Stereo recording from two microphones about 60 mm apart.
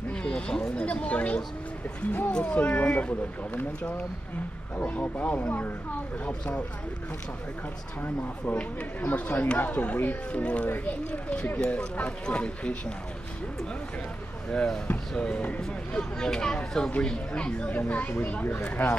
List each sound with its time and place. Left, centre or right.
0.1 s speech: centre; by 2.3 s left
2.3 s speech: left
8.5 s speech: left
14.5 s speech: centre; by 18.9 s left